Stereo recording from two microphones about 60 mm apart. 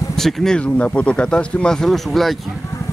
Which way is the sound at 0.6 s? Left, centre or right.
Left.